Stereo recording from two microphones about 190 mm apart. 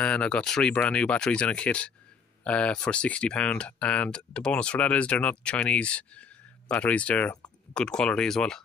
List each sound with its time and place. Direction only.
0.0 s speech: 5° left (ahead or behind)